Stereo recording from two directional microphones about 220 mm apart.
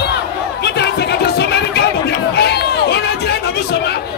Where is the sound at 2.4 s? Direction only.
50° left (ahead or behind).